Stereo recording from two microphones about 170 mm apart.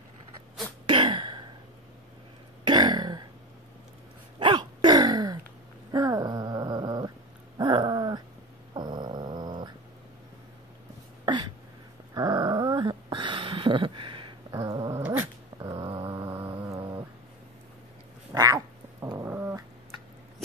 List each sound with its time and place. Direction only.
0.8 s throat clearing: 30° right (ahead or behind)
2.6 s throat clearing: 25° right (ahead or behind)
4.4 s a sound: 25° right (ahead or behind)
5.9 s dog: 20° right (ahead or behind)
11.3 s a sound: 25° right (ahead or behind)
14.5 s dog: 15° right (ahead or behind)
15.6 s dog: 35° right (ahead or behind)
18.3 s cat: 20° right (ahead or behind)